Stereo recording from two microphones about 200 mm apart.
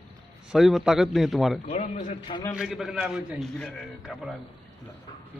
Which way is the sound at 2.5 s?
5° right (ahead or behind).